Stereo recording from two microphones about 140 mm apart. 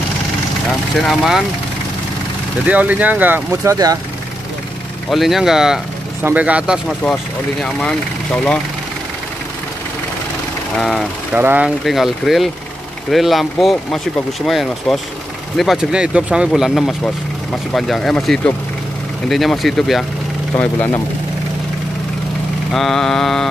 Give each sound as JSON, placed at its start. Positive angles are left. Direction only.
{"t": 0.9, "sound": "speech", "side_deg": 0}
{"t": 2.6, "sound": "speech", "side_deg": -10}
{"t": 3.7, "sound": "speech", "side_deg": -25}
{"t": 5.1, "sound": "speech", "side_deg": 0}
{"t": 10.8, "sound": "speech", "side_deg": 5}
{"t": 11.3, "sound": "speech", "side_deg": -10}
{"t": 11.8, "sound": "speech", "side_deg": 0}
{"t": 20.5, "sound": "speech", "side_deg": 15}
{"t": 22.7, "sound": "speech", "side_deg": 5}